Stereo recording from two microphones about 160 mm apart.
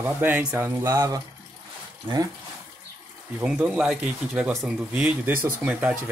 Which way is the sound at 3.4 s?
10° right (ahead or behind).